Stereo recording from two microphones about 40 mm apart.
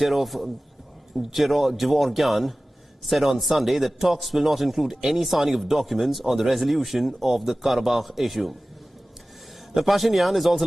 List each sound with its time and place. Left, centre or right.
0.0 s a man's voice: centre
9.8 s a man's voice: centre